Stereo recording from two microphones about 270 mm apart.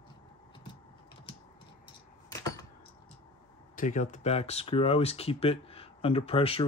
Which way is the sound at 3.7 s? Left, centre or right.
Left.